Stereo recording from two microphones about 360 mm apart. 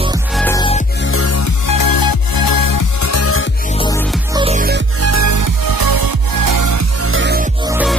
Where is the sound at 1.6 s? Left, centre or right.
Left.